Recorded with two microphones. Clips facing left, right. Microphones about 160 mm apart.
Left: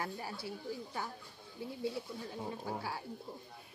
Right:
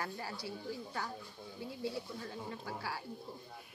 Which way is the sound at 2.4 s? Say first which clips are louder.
Left 3 dB; 20° left (ahead or behind).